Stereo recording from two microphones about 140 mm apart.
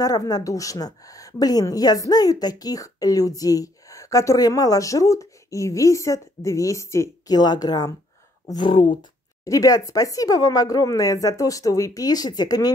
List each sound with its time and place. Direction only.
0.0 s a woman's voice: 25° left (ahead or behind)
9.4 s a woman's voice: 25° left (ahead or behind)